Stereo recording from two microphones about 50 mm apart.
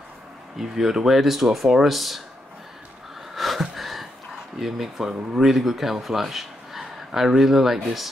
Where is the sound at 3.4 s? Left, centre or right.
Centre.